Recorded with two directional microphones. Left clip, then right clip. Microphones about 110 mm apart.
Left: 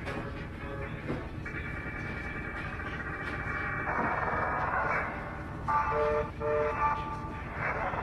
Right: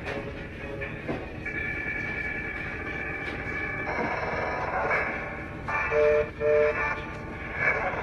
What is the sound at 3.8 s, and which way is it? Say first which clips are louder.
Music: even; 25° right (ahead or behind).